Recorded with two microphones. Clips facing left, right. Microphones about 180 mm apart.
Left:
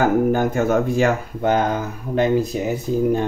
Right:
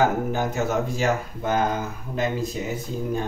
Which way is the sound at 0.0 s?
50° left (ahead or behind).